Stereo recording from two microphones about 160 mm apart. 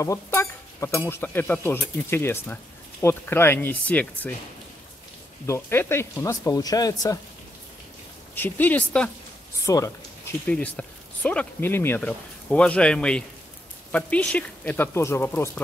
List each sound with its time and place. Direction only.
0.0 s speech: 20° left (ahead or behind)
5.5 s speech: 15° left (ahead or behind)
8.4 s speech: 10° left (ahead or behind)
9.7 s speech: 20° left (ahead or behind)
10.4 s speech: 10° left (ahead or behind)